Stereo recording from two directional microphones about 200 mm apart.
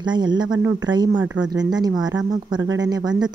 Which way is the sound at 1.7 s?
20° right (ahead or behind).